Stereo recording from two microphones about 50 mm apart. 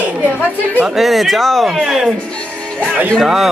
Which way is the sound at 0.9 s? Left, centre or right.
Centre.